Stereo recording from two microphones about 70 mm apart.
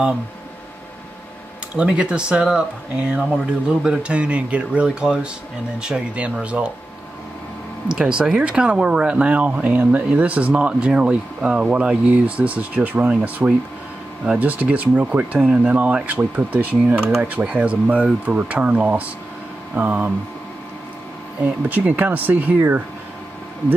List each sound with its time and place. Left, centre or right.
1.8 s speech: centre
5.0 s speech: centre
7.9 s speech: centre
21.6 s speech: right